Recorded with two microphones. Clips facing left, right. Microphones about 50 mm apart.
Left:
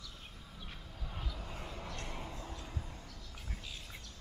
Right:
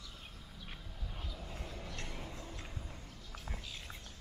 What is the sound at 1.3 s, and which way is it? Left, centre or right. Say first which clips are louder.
Vehicle: left 1 dB; centre.